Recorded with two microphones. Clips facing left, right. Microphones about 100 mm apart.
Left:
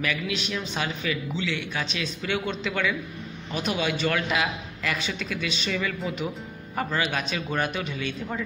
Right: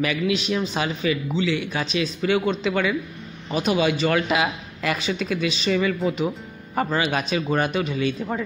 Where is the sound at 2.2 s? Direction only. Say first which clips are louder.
Right 7 dB; 10° right (ahead or behind).